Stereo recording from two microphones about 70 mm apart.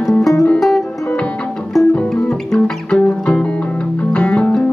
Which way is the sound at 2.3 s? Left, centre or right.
Centre.